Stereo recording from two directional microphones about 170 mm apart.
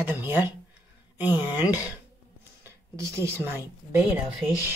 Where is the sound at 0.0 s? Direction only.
10° right (ahead or behind).